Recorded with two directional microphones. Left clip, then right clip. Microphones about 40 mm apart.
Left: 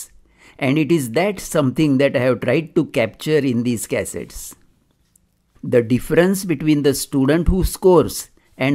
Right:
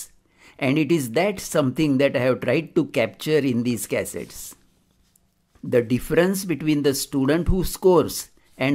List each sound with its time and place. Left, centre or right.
0.0 s speech: left
5.7 s speech: left